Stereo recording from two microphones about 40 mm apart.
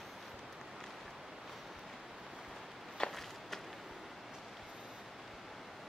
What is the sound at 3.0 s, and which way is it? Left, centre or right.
Walk, left.